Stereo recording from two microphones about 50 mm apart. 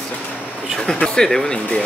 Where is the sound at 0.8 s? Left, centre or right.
Centre.